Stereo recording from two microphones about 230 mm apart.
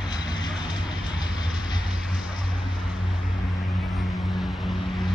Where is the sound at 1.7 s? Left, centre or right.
Centre.